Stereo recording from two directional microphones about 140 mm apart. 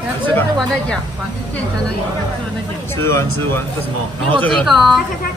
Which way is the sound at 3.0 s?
20° left (ahead or behind).